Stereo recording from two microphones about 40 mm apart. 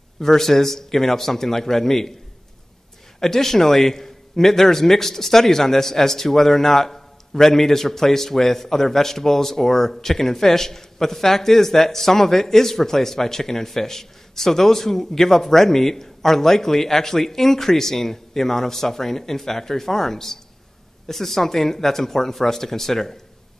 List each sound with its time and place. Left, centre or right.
0.2 s a man's voice: centre
3.2 s a man's voice: centre